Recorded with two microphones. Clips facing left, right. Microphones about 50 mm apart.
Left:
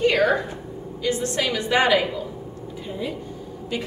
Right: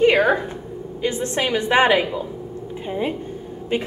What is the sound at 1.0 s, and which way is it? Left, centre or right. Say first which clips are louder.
A woman's voice: right 1 dB; right.